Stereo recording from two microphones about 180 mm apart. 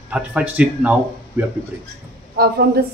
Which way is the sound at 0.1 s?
5° right (ahead or behind).